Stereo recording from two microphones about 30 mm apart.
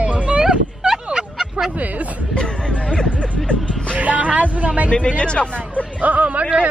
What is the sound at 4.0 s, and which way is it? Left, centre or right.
Speech, right.